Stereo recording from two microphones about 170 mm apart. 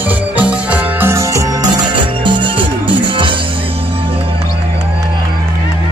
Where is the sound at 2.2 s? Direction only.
30° right (ahead or behind).